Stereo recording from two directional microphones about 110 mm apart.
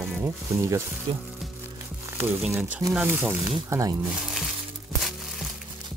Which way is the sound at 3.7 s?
30° right (ahead or behind).